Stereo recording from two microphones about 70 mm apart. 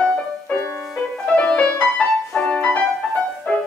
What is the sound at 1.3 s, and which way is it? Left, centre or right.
Music, centre.